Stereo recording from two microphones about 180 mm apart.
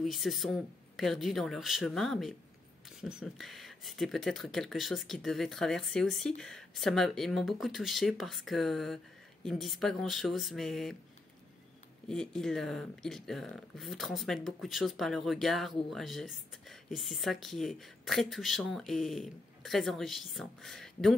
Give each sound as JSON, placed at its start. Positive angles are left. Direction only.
{"t": 0.0, "sound": "speech", "side_deg": 0}
{"t": 12.1, "sound": "speech", "side_deg": 0}